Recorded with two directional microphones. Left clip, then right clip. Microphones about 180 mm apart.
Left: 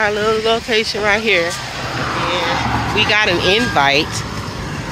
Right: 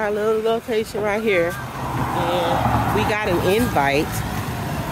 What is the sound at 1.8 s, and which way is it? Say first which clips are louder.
Vehicle: left 3 dB; 70° right (ahead or behind).